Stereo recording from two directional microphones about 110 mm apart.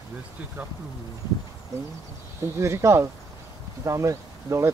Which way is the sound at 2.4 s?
25° right (ahead or behind).